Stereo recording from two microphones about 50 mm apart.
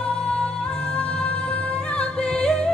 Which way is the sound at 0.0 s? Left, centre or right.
Centre.